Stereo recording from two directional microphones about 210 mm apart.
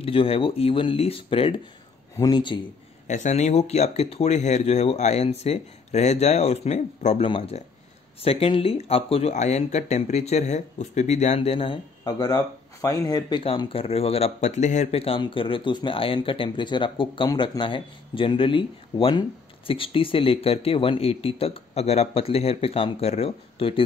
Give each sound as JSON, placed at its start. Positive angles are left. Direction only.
{"t": 0.0, "sound": "speech", "side_deg": 25}
{"t": 3.1, "sound": "speech", "side_deg": 35}